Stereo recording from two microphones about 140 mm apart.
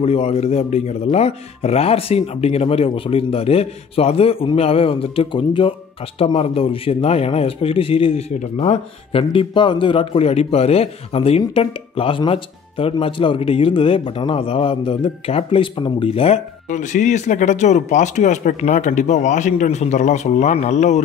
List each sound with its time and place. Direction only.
0.0 s speech: 45° left (ahead or behind)